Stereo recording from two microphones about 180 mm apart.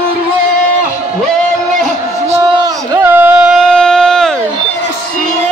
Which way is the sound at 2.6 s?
10° right (ahead or behind).